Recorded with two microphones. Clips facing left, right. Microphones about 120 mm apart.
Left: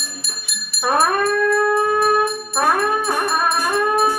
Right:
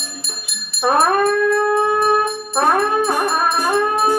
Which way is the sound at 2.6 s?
25° right (ahead or behind).